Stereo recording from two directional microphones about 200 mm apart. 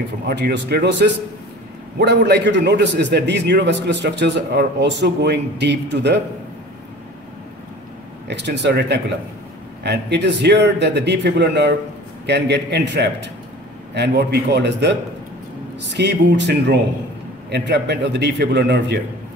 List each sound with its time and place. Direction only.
0.3 s a man's voice: 55° right (ahead or behind)
8.3 s a man's voice: 60° right (ahead or behind)